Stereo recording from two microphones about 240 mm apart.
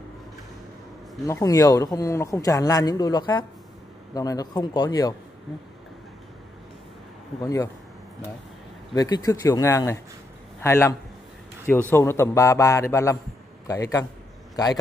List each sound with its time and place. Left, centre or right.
1.2 s speech: centre
7.4 s speech: centre
8.9 s a man's voice: centre